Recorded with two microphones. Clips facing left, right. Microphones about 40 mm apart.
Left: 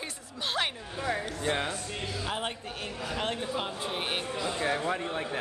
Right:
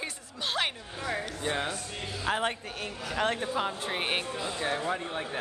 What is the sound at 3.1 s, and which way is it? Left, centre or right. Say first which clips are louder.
Speech: right 4 dB; right.